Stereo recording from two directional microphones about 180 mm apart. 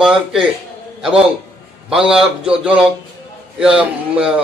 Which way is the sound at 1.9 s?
5° right (ahead or behind).